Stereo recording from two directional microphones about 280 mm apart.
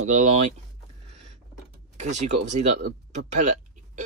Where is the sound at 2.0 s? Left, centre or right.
Right.